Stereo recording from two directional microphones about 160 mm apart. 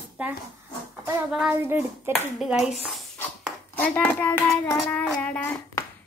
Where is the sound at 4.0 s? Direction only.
10° left (ahead or behind).